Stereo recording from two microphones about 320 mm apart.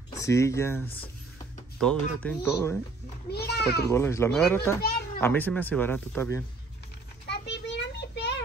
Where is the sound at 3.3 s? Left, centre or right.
Left.